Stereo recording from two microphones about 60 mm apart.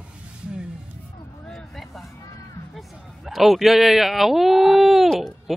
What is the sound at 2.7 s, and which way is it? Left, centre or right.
Speech, centre.